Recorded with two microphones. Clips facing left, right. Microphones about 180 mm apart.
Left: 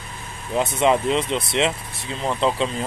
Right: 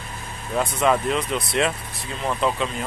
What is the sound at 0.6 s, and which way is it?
Speech, 25° left (ahead or behind).